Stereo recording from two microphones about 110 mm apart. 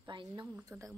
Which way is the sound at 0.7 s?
30° right (ahead or behind).